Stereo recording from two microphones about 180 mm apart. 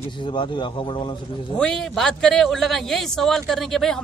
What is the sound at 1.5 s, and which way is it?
A man's voice, 5° left (ahead or behind).